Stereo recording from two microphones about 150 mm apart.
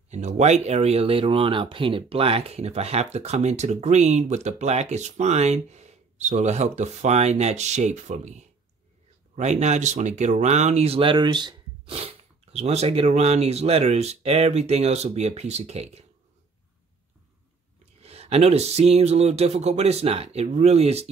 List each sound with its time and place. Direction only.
0.1 s speech: 50° right (ahead or behind)
18.0 s speech: 45° right (ahead or behind)